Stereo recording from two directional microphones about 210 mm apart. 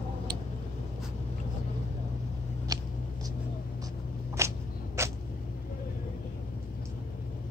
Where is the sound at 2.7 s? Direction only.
20° right (ahead or behind).